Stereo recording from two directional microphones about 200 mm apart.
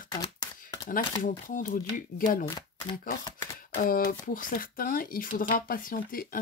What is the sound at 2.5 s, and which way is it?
Speech, 20° left (ahead or behind).